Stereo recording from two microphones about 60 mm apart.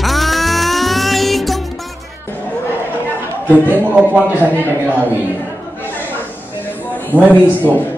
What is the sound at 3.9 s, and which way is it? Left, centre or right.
Speech, right.